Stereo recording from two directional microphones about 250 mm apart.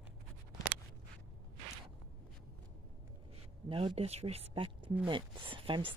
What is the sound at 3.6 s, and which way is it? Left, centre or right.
Speech, right.